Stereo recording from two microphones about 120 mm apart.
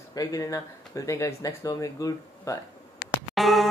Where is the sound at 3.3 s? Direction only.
Centre (ahead or behind).